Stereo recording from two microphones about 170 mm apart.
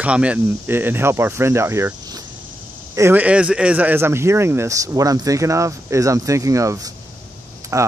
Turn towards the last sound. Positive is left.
turn(degrees=-20)  # may be behind; listen again after turning